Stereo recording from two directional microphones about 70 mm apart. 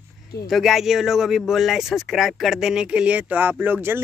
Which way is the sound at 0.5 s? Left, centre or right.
Centre.